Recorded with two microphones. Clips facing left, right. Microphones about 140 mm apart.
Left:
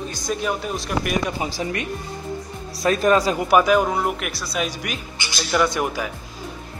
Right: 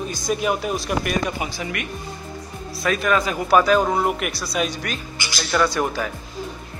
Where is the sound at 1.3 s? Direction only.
30° left (ahead or behind).